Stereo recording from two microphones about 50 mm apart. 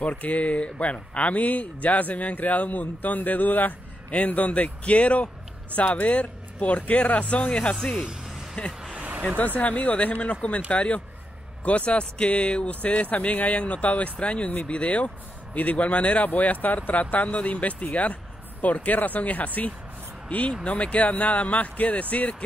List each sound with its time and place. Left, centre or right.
0.0 s speech: left
8.9 s a sound: right
9.6 s speech: left